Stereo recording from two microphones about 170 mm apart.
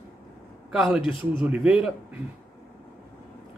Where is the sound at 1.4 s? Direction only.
5° right (ahead or behind).